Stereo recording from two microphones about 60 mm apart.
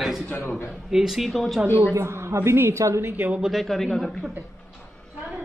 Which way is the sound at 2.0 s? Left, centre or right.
Right.